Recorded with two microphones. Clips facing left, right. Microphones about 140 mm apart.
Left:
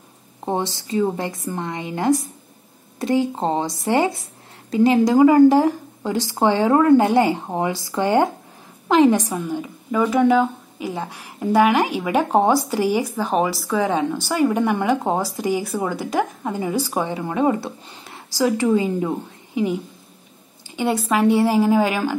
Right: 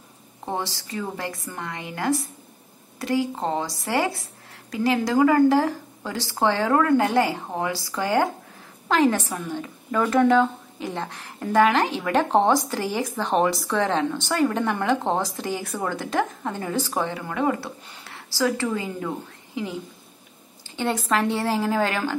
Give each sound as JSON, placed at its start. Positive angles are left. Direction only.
{"t": 0.5, "sound": "a woman's voice", "side_deg": 20}